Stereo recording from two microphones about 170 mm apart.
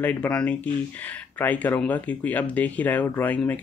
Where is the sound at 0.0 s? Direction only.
10° left (ahead or behind).